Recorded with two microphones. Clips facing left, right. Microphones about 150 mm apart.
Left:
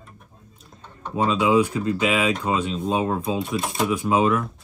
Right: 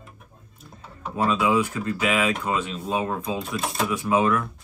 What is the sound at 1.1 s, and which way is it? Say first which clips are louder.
Speech: left 2 dB; 25° left (ahead or behind).